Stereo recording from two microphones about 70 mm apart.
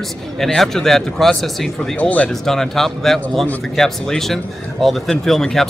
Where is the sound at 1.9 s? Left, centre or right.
Centre.